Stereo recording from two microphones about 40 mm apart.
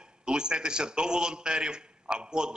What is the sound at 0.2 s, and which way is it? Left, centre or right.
A man's voice, right.